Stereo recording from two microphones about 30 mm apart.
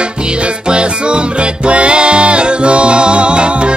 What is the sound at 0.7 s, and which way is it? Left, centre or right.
Music, right.